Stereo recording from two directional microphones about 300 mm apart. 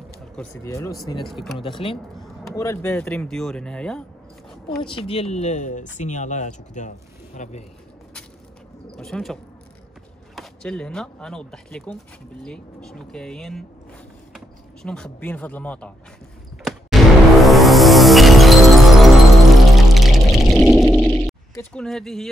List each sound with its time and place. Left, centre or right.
0.4 s speech: centre
2.1 s a sound: centre
2.5 s speech: centre
4.8 s speech: centre
8.8 s speech: centre
16.6 s music: centre